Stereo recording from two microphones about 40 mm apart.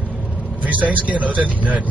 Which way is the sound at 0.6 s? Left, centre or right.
Right.